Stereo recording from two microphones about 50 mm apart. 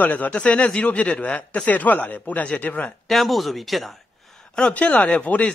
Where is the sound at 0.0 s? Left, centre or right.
Left.